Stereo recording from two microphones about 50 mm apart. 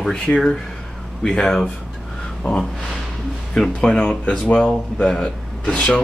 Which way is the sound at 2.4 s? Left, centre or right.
Centre.